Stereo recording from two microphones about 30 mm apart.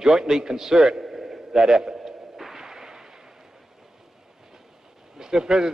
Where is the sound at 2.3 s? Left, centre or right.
Centre.